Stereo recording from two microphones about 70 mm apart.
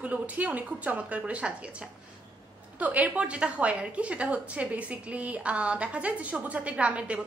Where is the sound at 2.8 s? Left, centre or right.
Right.